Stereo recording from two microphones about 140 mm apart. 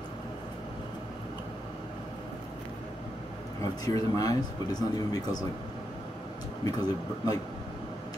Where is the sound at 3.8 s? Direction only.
25° left (ahead or behind).